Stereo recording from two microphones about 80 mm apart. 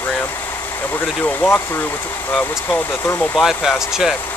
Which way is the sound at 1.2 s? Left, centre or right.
Left.